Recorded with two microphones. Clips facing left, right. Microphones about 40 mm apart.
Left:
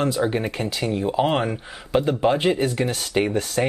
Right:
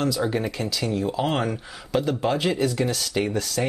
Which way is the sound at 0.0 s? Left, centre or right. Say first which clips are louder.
Left 2 dB; left.